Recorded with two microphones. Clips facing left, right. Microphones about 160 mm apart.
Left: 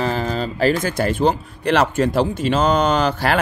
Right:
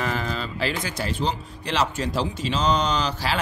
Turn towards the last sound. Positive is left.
turn(degrees=55)  # may be behind; listen again after turning